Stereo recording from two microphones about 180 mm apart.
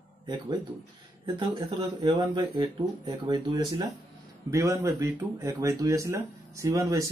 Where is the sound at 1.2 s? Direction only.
25° right (ahead or behind).